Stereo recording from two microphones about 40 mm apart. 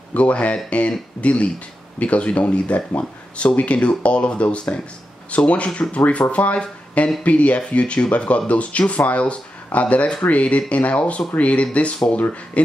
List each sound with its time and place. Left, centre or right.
0.1 s speech: left